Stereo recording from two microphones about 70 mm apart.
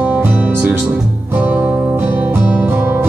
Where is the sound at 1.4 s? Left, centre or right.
Right.